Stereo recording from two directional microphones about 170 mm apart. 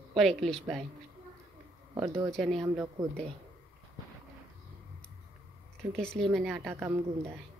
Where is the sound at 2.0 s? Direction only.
20° right (ahead or behind).